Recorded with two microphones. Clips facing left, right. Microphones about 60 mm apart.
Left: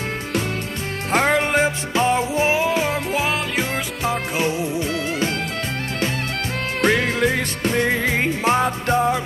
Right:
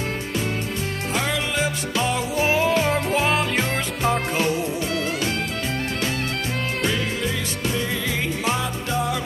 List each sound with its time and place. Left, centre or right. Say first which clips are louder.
1.1 s music: left 8 dB; left
2.6 s music: even; centre
4.4 s music: left 1 dB; left
6.8 s music: left 9 dB; left